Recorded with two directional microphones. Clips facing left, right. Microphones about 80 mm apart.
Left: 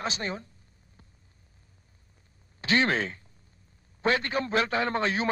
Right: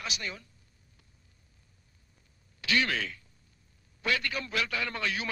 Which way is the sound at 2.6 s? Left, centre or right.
Left.